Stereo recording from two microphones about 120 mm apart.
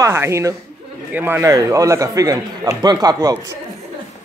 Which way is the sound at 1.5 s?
30° right (ahead or behind).